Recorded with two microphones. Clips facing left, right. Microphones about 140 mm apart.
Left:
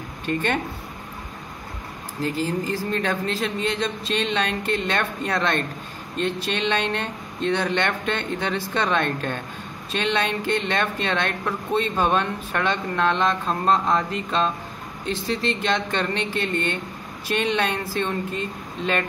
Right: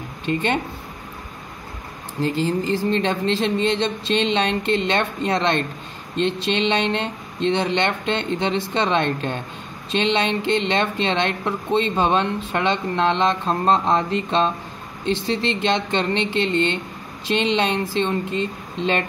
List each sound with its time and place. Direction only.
0.3 s speech: 20° right (ahead or behind)
2.2 s speech: 30° right (ahead or behind)